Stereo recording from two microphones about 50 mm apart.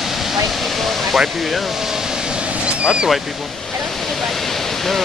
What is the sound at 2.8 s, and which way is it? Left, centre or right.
Speech, centre.